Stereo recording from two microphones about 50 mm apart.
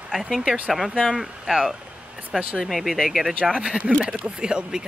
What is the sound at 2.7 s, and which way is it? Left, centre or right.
Speech, centre.